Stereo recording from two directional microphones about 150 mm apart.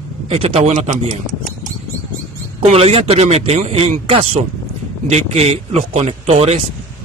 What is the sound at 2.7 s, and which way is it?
Speech, 45° right (ahead or behind).